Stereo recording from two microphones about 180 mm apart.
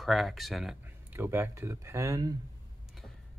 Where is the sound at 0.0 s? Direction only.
Centre (ahead or behind).